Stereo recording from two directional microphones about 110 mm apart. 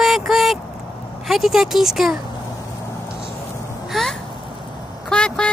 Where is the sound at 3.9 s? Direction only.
Centre (ahead or behind).